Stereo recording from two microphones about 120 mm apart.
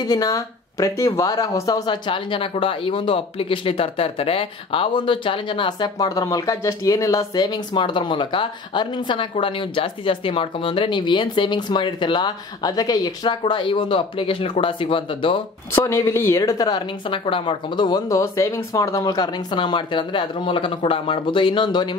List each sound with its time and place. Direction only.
0.0 s speech: 35° left (ahead or behind)
2.0 s speech: 45° left (ahead or behind)
6.0 s speech: 30° left (ahead or behind); by 15.4 s 45° left (ahead or behind)
15.7 s a woman's voice: 25° left (ahead or behind); by 21.9 s 40° left (ahead or behind)